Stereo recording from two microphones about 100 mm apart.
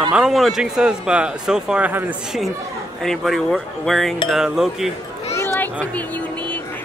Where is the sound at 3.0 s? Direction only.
5° left (ahead or behind).